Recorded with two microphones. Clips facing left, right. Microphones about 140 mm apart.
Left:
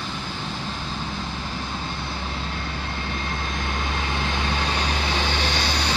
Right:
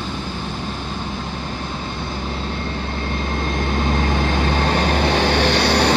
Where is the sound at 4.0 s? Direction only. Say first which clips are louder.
Right 7 dB; 45° right (ahead or behind); by 5.9 s 65° right (ahead or behind).